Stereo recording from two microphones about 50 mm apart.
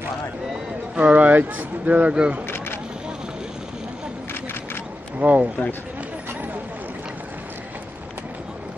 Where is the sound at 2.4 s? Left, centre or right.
Left.